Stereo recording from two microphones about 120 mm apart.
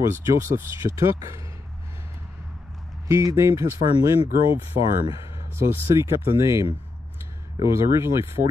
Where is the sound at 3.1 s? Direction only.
25° right (ahead or behind).